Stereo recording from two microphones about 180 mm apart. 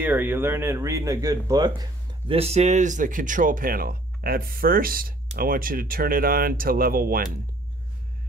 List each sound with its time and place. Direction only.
0.0 s speech: 10° right (ahead or behind); by 7.2 s 55° right (ahead or behind)